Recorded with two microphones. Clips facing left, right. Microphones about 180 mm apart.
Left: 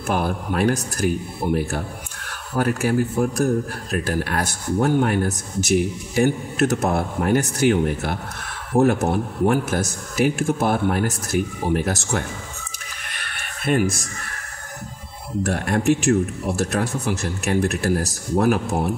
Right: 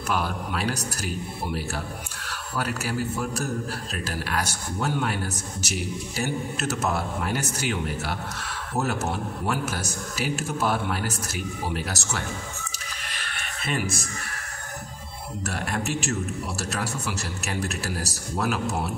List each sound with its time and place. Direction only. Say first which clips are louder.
0.0 s a man's voice: left 5 dB; 50° left (ahead or behind)
13.7 s a man's voice: left 9 dB; 55° left (ahead or behind)
15.5 s a man's voice: left 9 dB; 55° left (ahead or behind)